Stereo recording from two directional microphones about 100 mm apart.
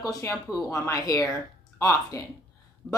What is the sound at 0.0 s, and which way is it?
Speech, 35° left (ahead or behind).